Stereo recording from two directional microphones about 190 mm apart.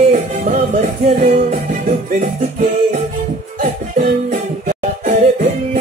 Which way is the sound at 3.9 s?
45° right (ahead or behind).